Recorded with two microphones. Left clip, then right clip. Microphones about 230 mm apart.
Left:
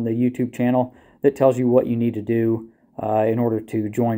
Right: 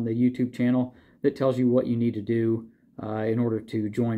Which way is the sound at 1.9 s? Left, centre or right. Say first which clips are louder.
Left 4 dB; left.